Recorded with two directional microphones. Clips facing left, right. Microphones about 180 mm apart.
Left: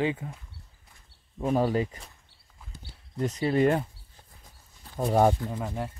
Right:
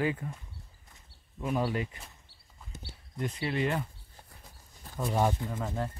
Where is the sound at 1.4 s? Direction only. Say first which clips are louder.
Left 6 dB; 35° left (ahead or behind).